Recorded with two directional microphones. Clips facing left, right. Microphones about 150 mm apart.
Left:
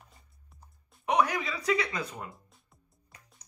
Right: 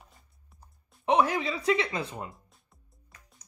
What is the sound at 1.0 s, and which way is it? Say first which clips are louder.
Speech: right 3 dB; 25° right (ahead or behind).